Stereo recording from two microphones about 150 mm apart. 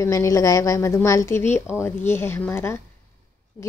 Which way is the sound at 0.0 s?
20° left (ahead or behind).